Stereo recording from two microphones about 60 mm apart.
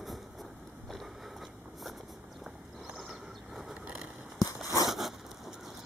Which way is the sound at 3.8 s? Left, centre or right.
Centre.